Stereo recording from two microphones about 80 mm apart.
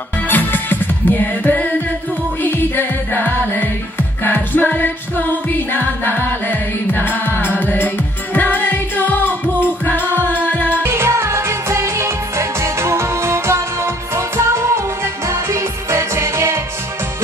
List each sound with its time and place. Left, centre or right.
0.3 s music: left
10.8 s music: right